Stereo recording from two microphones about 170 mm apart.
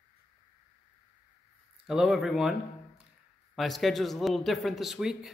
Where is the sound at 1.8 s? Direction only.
5° right (ahead or behind).